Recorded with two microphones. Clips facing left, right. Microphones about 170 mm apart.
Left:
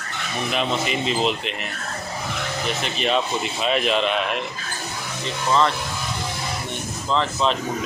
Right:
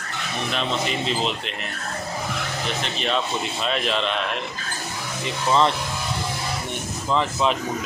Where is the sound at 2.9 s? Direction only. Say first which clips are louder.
Left 3 dB; 5° left (ahead or behind).